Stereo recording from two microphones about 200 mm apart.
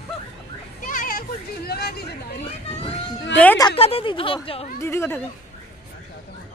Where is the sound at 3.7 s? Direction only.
30° left (ahead or behind).